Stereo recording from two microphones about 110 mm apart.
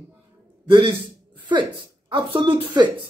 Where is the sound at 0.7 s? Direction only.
45° right (ahead or behind).